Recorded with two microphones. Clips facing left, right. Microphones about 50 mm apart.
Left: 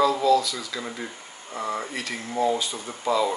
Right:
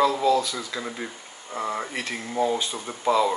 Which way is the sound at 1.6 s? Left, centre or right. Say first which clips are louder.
Even; centre.